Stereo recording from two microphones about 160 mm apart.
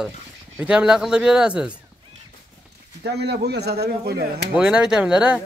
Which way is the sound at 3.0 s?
90° right.